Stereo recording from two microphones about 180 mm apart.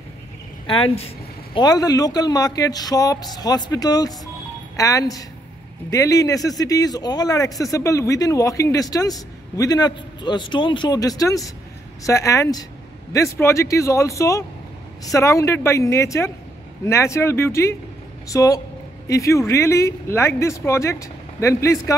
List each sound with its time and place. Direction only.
1.5 s speech: 20° left (ahead or behind)